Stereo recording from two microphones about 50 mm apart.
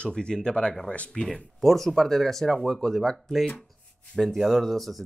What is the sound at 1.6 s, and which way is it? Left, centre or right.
Speech, centre.